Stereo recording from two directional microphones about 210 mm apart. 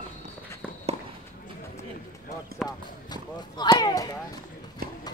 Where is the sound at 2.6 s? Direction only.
20° left (ahead or behind).